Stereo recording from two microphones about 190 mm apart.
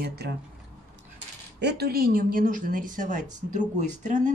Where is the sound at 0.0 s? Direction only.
55° right (ahead or behind).